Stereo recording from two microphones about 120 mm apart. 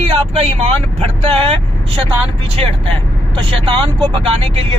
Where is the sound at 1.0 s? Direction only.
50° right (ahead or behind).